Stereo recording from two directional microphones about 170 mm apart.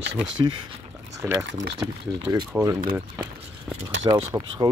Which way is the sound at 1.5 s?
90° right.